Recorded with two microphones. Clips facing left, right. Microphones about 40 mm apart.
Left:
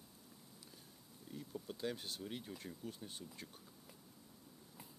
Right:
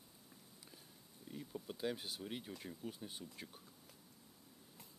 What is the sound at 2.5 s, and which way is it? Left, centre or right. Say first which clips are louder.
Speech: right 1 dB; centre.